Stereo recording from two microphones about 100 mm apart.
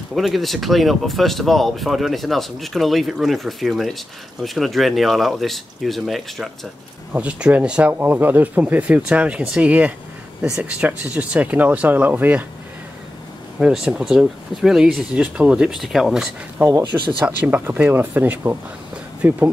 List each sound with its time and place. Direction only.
0.1 s speech: centre (ahead or behind)
7.1 s speech: 15° right (ahead or behind)
13.6 s speech: 10° right (ahead or behind)